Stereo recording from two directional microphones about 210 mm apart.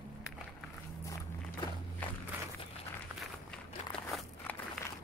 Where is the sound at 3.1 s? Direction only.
10° right (ahead or behind).